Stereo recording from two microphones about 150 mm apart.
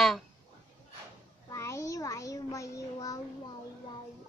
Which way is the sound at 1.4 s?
20° left (ahead or behind).